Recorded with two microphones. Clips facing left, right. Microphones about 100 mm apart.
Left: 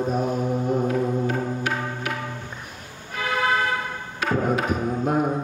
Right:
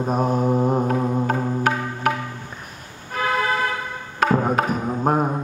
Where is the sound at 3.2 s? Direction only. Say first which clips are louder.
Right 5 dB; 40° right (ahead or behind).